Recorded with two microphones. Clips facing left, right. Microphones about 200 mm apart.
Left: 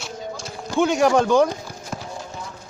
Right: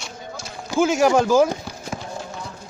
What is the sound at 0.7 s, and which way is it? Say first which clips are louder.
Speech: right 1 dB; centre (ahead or behind).